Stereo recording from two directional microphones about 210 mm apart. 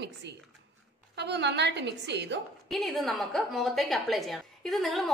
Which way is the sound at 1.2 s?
55° right (ahead or behind).